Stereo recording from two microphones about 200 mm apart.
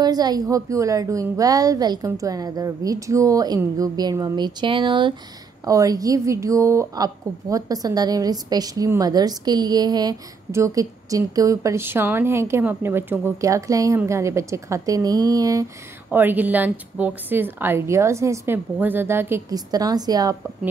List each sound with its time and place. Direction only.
0.0 s a woman's voice: 20° right (ahead or behind)